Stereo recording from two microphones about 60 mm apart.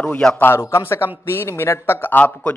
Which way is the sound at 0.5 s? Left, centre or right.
Left.